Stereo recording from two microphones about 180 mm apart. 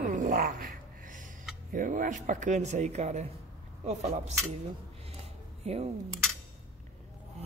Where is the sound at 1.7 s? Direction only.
50° right (ahead or behind).